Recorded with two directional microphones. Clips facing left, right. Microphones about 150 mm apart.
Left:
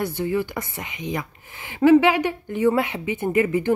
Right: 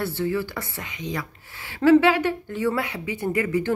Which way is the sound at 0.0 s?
15° left (ahead or behind).